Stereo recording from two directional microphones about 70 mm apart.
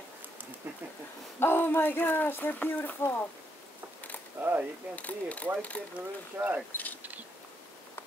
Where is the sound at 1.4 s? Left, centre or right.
Left.